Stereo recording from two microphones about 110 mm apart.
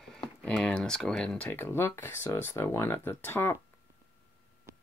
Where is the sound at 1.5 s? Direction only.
20° left (ahead or behind).